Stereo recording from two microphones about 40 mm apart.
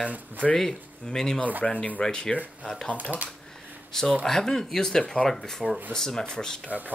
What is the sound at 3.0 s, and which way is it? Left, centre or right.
Speech, right.